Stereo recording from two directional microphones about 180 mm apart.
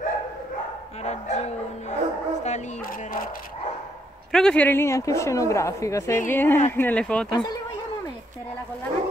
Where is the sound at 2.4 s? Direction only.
40° left (ahead or behind).